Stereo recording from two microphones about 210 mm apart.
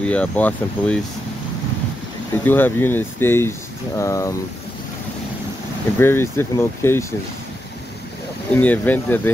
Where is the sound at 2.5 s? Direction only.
10° left (ahead or behind).